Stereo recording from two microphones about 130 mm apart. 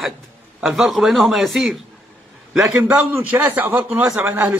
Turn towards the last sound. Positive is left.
turn(degrees=-15)  # may be behind; listen again after turning